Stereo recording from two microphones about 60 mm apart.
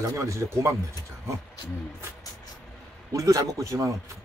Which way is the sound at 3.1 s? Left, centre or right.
Right.